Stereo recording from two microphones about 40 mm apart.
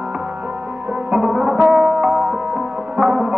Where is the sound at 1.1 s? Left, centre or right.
Right.